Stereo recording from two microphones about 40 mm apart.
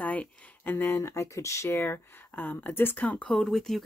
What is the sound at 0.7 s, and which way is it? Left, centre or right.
Speech, left.